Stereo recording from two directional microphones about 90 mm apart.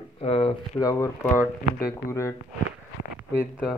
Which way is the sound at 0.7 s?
40° left (ahead or behind).